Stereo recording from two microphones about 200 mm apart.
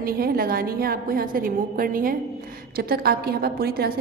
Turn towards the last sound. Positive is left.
turn(degrees=-50)  # may be behind; listen again after turning